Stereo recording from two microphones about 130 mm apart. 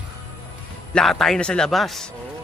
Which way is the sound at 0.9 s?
Centre (ahead or behind).